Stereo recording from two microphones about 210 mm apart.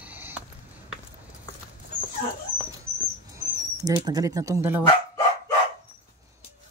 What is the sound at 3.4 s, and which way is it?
Speech, 15° right (ahead or behind).